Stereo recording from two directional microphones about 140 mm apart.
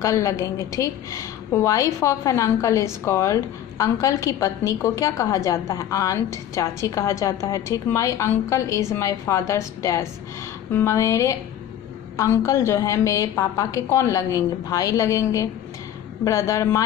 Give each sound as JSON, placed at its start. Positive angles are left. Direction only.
{"t": 0.0, "sound": "a woman's voice", "side_deg": 25}